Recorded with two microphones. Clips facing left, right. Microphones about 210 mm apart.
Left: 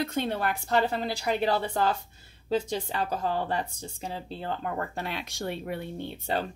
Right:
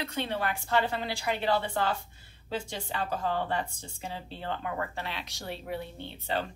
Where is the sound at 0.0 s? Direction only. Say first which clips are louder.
Left 4 dB; 45° left (ahead or behind).